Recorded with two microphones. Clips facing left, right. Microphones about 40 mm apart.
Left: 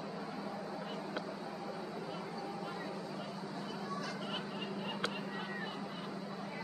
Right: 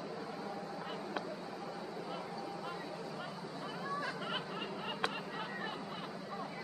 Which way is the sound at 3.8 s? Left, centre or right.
Right.